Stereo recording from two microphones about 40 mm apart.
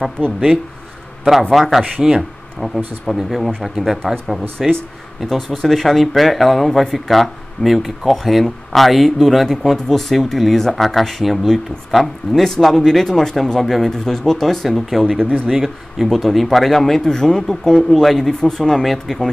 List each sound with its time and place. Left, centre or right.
1.5 s speech: centre
2.0 s speech: centre
2.6 s speech: centre
5.2 s speech: centre
9.5 s speech: centre
15.4 s speech: centre
16.0 s speech: centre